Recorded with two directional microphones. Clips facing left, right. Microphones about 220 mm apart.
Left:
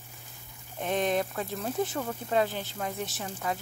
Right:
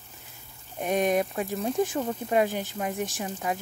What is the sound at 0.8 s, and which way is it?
Speech, 15° right (ahead or behind).